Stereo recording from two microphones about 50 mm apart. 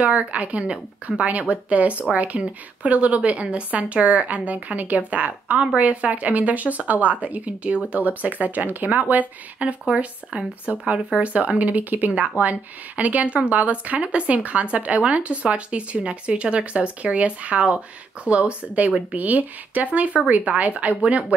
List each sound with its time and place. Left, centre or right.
0.1 s a woman's voice: right